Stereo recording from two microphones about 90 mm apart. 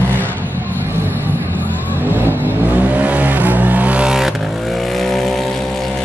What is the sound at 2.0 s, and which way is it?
Vehicle, 20° right (ahead or behind).